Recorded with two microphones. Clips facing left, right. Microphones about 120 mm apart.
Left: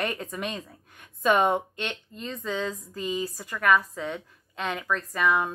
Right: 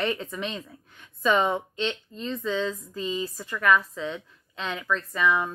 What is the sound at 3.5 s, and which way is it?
Speech, 45° left (ahead or behind).